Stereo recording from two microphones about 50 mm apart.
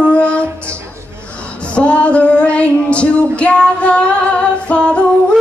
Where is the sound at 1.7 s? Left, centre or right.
Left.